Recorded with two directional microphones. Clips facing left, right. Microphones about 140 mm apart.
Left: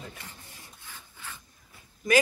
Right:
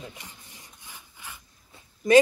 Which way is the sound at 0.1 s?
15° right (ahead or behind).